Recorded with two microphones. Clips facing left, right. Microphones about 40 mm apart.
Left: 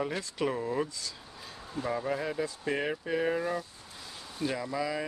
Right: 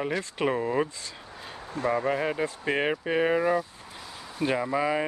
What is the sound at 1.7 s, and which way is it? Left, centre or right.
Speech, right.